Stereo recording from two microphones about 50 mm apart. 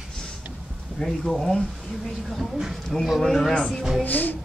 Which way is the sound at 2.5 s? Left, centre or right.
Centre.